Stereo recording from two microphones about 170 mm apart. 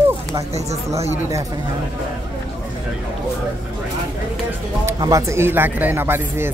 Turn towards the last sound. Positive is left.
turn(degrees=-15)  # may be behind; listen again after turning